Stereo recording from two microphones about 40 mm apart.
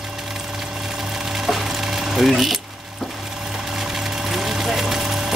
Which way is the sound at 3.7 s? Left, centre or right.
Centre.